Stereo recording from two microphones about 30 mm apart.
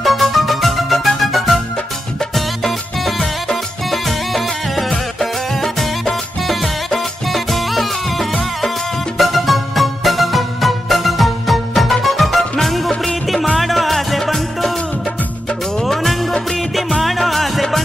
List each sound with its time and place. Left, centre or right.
0.0 s music: centre
15.9 s music: centre
16.7 s music: centre